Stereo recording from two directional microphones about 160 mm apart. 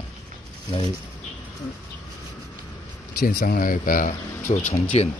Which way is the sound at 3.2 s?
70° left (ahead or behind).